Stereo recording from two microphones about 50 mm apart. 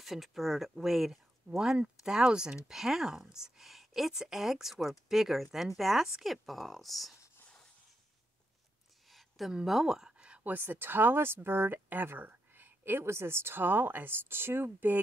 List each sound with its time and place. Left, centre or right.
0.0 s speech: centre
2.0 s speech: centre
9.7 s speech: centre
10.1 s a sound: right
10.5 s speech: right